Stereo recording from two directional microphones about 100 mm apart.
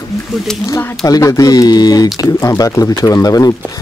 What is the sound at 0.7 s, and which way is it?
Speech, 30° left (ahead or behind).